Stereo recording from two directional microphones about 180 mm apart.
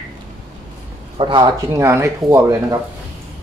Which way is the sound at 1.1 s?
25° right (ahead or behind).